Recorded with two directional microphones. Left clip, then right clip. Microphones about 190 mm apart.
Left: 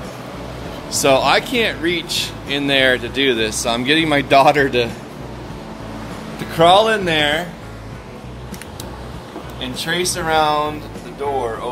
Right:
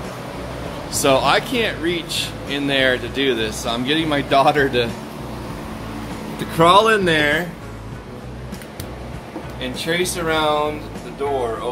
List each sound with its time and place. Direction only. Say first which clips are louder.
0.9 s speech: left 2 dB; 15° left (ahead or behind)
6.5 s speech: left 1 dB; 5° left (ahead or behind)
9.6 s speech: even; 25° left (ahead or behind)